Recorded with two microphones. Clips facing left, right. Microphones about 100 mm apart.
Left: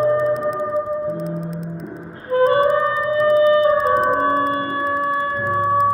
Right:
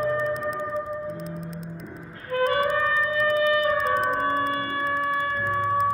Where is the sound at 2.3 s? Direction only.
30° left (ahead or behind).